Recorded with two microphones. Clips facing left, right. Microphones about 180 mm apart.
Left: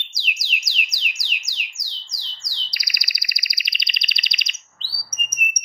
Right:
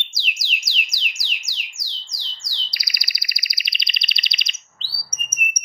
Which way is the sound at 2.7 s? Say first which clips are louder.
Left 1 dB; 25° right (ahead or behind).